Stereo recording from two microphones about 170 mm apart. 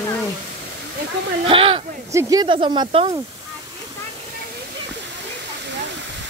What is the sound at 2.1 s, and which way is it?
Speech, 20° right (ahead or behind).